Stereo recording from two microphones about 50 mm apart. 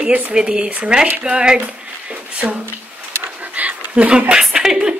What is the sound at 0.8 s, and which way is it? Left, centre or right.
Child singing, centre.